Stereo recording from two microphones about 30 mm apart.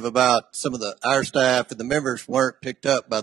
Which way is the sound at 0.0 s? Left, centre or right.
Centre.